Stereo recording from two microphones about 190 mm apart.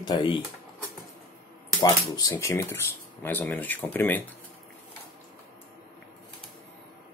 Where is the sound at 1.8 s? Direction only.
20° left (ahead or behind).